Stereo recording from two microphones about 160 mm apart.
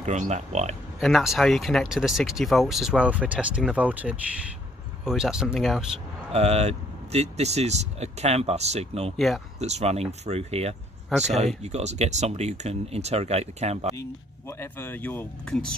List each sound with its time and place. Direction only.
0.0 s speech: 45° right (ahead or behind)
1.0 s speech: centre (ahead or behind)
6.3 s speech: 40° right (ahead or behind)
9.1 s speech: centre (ahead or behind)
9.6 s speech: 45° right (ahead or behind)
11.1 s speech: centre (ahead or behind)
11.6 s speech: 45° right (ahead or behind)
14.6 s speech: 15° left (ahead or behind)